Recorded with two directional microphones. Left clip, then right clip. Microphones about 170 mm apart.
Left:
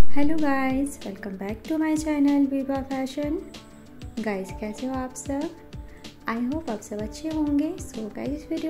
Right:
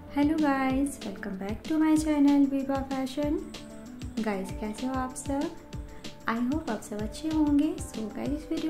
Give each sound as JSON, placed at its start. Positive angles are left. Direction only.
{"t": 0.1, "sound": "a woman's voice", "side_deg": 15}
{"t": 1.4, "sound": "a woman's voice", "side_deg": 0}
{"t": 1.8, "sound": "a woman's voice", "side_deg": 15}
{"t": 2.2, "sound": "a woman's voice", "side_deg": 0}
{"t": 4.3, "sound": "a woman's voice", "side_deg": 10}
{"t": 4.7, "sound": "a woman's voice", "side_deg": 0}